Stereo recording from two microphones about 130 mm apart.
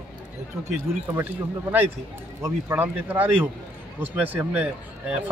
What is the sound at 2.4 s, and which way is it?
Speech, 15° right (ahead or behind).